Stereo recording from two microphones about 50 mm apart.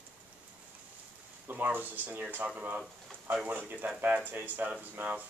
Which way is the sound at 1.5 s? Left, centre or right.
Right.